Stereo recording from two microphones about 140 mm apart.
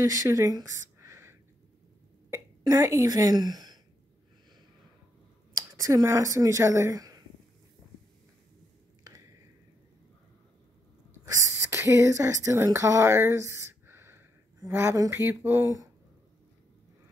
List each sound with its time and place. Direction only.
0.0 s speech: 25° right (ahead or behind)
2.6 s a woman's voice: 20° right (ahead or behind)
5.8 s speech: 25° right (ahead or behind)
11.3 s speech: 20° right (ahead or behind)